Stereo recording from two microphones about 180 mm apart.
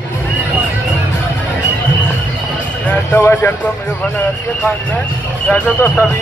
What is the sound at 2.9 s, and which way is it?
Speech, 10° left (ahead or behind).